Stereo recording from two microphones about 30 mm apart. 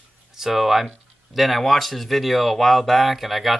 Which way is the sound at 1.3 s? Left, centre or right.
Centre.